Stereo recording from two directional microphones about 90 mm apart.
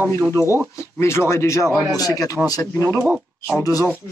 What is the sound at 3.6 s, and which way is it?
Speech, 30° right (ahead or behind).